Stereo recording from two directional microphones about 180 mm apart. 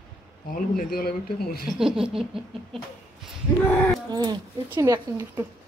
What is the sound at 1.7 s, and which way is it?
Laughter, 5° right (ahead or behind).